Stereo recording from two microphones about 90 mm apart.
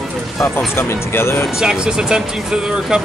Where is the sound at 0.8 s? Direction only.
30° left (ahead or behind).